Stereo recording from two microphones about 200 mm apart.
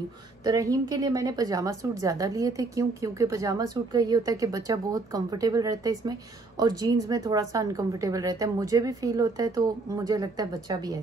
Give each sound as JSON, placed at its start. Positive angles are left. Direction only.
{"t": 0.4, "sound": "a woman's voice", "side_deg": -15}